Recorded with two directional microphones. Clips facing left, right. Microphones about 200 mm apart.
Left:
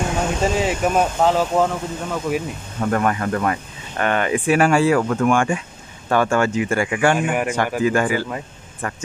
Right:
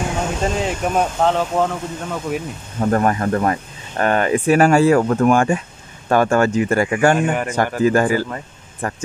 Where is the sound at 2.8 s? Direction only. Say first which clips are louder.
Right 3 dB; 35° right (ahead or behind).